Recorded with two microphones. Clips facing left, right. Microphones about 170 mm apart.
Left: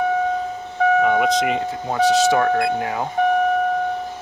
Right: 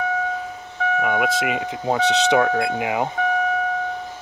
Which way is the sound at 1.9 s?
15° right (ahead or behind).